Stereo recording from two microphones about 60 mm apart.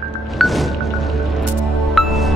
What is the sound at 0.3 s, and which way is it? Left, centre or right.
Music, centre.